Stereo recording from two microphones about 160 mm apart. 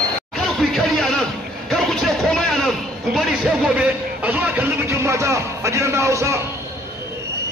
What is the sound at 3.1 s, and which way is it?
Speech, 5° right (ahead or behind).